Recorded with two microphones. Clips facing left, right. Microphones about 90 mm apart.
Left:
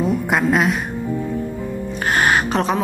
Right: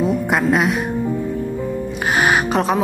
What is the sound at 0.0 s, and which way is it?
Speech, centre (ahead or behind).